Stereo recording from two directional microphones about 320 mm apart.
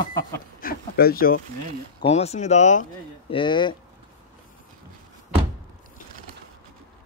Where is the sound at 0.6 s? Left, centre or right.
Left.